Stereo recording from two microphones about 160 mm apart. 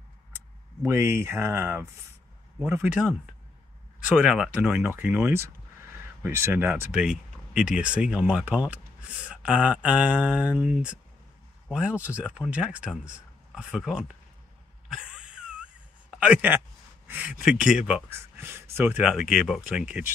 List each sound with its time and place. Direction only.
0.8 s speech: 15° right (ahead or behind)
4.2 s speech: 5° right (ahead or behind)
14.9 s a sound: 5° right (ahead or behind)
16.1 s a man's voice: 5° right (ahead or behind)